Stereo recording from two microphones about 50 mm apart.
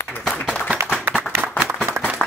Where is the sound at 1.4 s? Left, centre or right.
Left.